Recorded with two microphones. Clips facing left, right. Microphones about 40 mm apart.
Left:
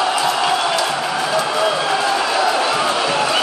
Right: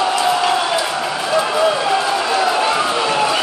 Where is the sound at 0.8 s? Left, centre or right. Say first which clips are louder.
Left 1 dB; centre.